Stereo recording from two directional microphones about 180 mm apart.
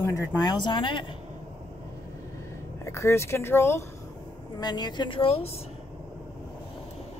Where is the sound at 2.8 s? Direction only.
15° left (ahead or behind); by 5.5 s 35° left (ahead or behind).